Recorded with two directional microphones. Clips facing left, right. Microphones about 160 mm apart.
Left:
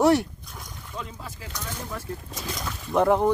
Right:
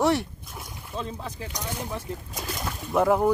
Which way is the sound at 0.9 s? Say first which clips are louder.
Right 4 dB; 30° right (ahead or behind).